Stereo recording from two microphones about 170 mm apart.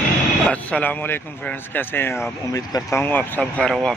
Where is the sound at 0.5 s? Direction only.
10° left (ahead or behind).